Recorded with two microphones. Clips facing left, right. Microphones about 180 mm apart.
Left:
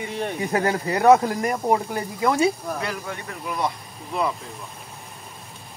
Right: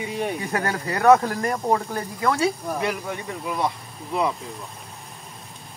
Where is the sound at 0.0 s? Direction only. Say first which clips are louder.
Right 1 dB; 5° right (ahead or behind).